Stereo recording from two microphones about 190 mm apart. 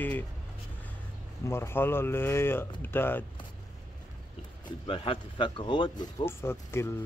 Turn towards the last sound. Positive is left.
turn(degrees=15)  # may be behind; listen again after turning